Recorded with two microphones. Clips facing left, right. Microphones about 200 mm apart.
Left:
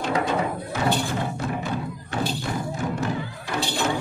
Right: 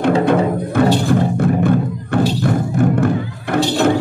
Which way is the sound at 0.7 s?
55° right (ahead or behind).